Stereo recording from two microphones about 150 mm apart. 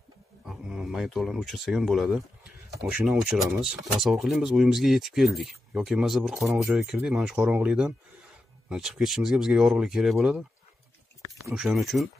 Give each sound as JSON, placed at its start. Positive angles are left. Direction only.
{"t": 0.5, "sound": "speech", "side_deg": -5}
{"t": 11.5, "sound": "speech", "side_deg": 0}